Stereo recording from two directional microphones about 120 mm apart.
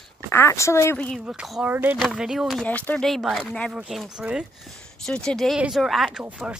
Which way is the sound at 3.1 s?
Centre (ahead or behind).